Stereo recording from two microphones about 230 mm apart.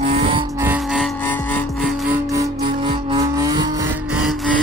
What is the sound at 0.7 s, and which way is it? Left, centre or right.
Music, centre.